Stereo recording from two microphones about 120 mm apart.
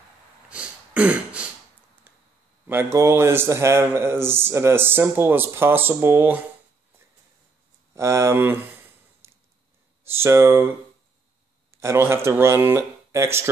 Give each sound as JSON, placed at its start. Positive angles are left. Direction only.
{"t": 0.5, "sound": "throat clearing", "side_deg": -10}
{"t": 2.1, "sound": "a sound", "side_deg": -15}
{"t": 2.6, "sound": "speech", "side_deg": -20}
{"t": 7.9, "sound": "speech", "side_deg": -25}
{"t": 10.0, "sound": "speech", "side_deg": -20}
{"t": 11.7, "sound": "speech", "side_deg": -20}